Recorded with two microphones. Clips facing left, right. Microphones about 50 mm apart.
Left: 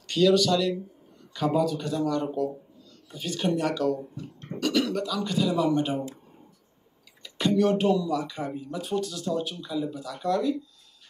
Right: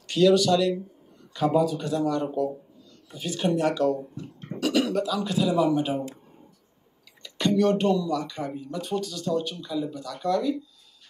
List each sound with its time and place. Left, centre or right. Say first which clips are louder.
0.0 s speech: right 2 dB; centre
7.2 s speech: right 1 dB; centre